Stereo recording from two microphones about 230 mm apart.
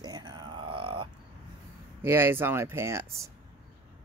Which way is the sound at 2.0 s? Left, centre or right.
Centre.